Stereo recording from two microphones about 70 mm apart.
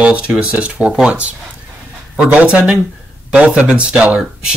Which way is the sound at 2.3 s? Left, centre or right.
Centre.